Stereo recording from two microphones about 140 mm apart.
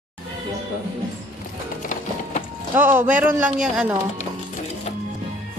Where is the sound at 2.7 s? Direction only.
15° right (ahead or behind).